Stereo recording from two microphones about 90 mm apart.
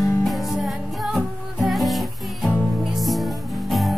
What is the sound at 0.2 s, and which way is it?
Music, centre (ahead or behind).